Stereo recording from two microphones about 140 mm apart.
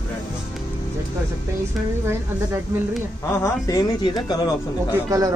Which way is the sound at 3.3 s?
20° left (ahead or behind).